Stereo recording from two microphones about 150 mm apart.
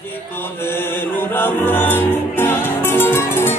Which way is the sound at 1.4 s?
15° left (ahead or behind).